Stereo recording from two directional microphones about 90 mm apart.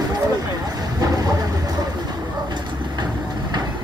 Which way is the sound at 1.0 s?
45° right (ahead or behind).